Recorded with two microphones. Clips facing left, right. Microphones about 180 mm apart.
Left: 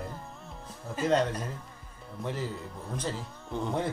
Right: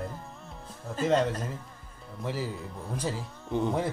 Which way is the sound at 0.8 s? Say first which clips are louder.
Right 1 dB; centre (ahead or behind).